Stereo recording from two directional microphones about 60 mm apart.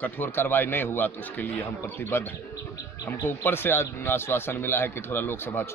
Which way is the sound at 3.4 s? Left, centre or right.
Left.